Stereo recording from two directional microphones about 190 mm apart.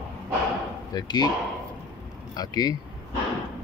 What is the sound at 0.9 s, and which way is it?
Speech, 20° left (ahead or behind).